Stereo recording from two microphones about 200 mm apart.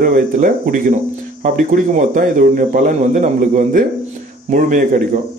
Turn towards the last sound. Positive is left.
turn(degrees=-40)  # may be behind; listen again after turning